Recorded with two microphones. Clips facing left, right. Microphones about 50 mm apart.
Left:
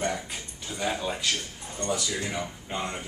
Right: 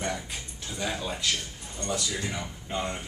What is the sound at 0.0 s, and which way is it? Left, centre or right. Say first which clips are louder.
A man's voice: left 2 dB; centre.